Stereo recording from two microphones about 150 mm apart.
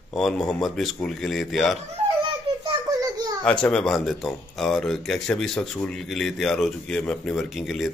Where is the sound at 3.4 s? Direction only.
5° left (ahead or behind).